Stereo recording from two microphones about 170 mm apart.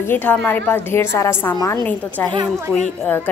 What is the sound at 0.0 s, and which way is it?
A woman's voice, 10° left (ahead or behind).